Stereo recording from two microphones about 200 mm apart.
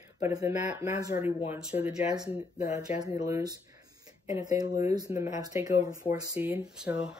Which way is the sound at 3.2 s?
15° right (ahead or behind).